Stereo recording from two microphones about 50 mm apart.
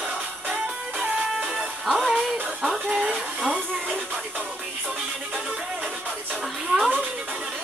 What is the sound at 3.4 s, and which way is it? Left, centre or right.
Speech, centre.